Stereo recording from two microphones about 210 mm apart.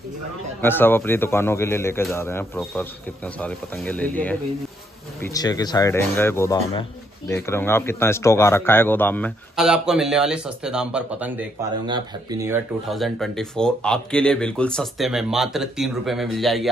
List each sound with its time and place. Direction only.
0.6 s speech: 10° left (ahead or behind)
9.6 s speech: centre (ahead or behind)
11.8 s speech: 20° right (ahead or behind)
12.8 s speech: centre (ahead or behind)